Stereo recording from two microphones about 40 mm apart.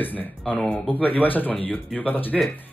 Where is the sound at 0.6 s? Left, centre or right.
Centre.